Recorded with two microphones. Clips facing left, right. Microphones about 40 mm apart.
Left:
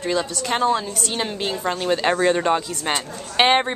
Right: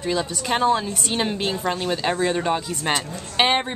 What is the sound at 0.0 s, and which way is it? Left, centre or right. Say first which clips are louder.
A woman's voice: left 1 dB; centre.